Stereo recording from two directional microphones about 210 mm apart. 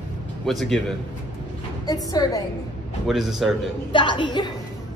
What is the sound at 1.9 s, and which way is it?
Speech, 15° left (ahead or behind).